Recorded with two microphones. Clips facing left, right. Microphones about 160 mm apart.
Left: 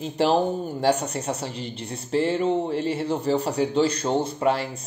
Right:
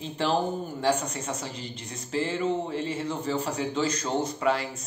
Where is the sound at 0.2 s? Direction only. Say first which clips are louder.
Left 5 dB; 35° left (ahead or behind).